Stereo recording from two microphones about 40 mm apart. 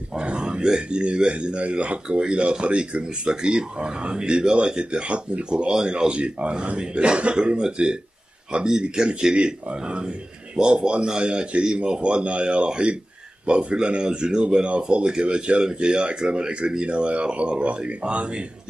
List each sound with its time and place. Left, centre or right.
0.1 s speech: right